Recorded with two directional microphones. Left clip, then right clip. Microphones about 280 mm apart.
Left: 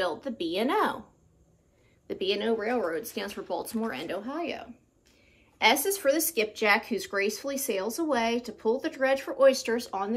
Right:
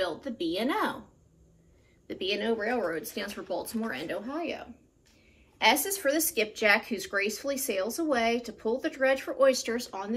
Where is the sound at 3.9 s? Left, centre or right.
Centre.